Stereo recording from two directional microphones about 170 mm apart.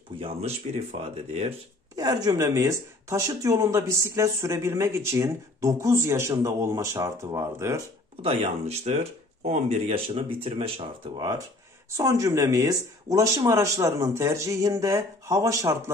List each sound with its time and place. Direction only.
0.2 s speech: 35° right (ahead or behind)
2.0 s speech: 20° right (ahead or behind)
8.2 s speech: 35° right (ahead or behind); by 15.8 s 15° right (ahead or behind)